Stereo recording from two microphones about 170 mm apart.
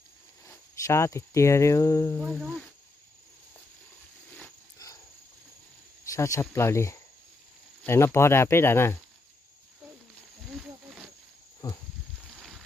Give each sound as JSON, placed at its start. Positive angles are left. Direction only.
{"t": 0.5, "sound": "speech", "side_deg": 15}
{"t": 2.2, "sound": "speech", "side_deg": -10}
{"t": 4.7, "sound": "cricket", "side_deg": 20}
{"t": 6.1, "sound": "speech", "side_deg": 20}
{"t": 11.6, "sound": "a sound", "side_deg": 20}